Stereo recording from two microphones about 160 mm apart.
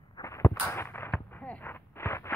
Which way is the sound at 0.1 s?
20° left (ahead or behind).